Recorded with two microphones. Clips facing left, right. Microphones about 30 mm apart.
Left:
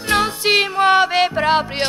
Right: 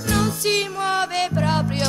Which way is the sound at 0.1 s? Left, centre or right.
Left.